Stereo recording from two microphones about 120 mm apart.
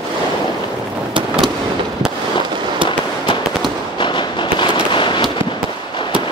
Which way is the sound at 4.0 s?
40° left (ahead or behind).